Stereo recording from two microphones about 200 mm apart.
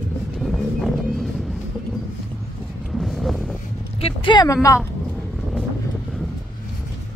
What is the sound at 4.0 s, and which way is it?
Speech, 25° left (ahead or behind).